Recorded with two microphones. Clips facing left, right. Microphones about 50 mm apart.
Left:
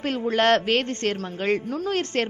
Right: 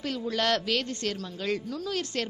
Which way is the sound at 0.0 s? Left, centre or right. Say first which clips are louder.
Left 7 dB; left.